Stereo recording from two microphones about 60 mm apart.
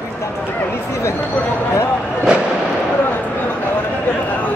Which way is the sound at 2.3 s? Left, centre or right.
Centre.